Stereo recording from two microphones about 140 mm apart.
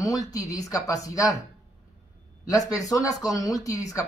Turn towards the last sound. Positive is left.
turn(degrees=25)  # may be behind; listen again after turning